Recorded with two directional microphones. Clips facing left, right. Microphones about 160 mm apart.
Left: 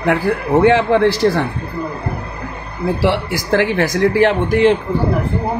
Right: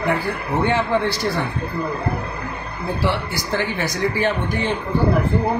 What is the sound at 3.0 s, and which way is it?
Speech, 85° left.